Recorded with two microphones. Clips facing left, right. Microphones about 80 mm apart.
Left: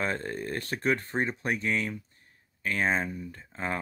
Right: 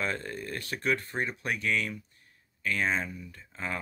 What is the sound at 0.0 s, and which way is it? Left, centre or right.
Speech, left.